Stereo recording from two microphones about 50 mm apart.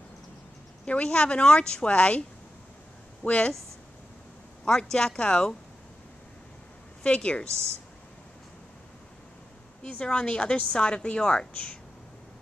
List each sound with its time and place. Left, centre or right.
0.8 s a woman's voice: left
3.3 s a woman's voice: left
4.6 s speech: centre
7.0 s a woman's voice: left
9.8 s a woman's voice: left